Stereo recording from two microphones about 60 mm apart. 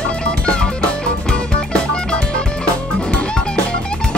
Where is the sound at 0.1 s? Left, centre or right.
Centre.